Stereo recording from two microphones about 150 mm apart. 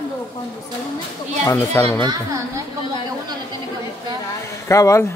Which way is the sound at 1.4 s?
15° left (ahead or behind).